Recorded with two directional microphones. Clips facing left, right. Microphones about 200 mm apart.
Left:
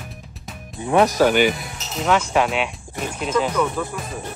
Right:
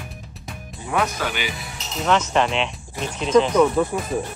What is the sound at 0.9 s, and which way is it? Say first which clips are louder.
Speech: left 8 dB; 35° left (ahead or behind).